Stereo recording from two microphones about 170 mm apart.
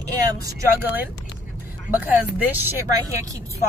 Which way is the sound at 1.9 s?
20° left (ahead or behind).